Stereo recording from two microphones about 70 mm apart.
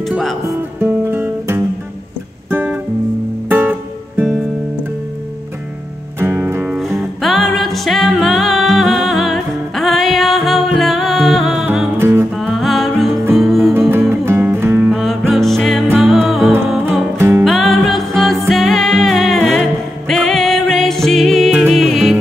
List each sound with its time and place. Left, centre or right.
0.7 s guitar: right
3.4 s music: right
6.1 s music: right
6.8 s music: centre
12.0 s music: right
12.4 s music: centre
13.7 s music: right
14.9 s music: centre